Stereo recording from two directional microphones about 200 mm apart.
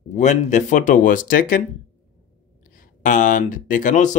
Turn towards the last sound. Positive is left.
turn(degrees=40)  # may be behind; listen again after turning